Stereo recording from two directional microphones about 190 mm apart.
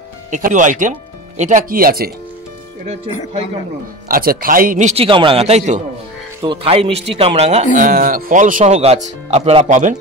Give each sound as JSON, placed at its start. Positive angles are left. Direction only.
{"t": 0.3, "sound": "speech", "side_deg": -40}
{"t": 4.1, "sound": "speech", "side_deg": -50}
{"t": 7.7, "sound": "speech", "side_deg": -45}